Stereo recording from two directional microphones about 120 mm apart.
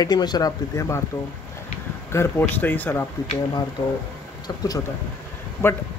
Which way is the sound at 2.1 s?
20° left (ahead or behind).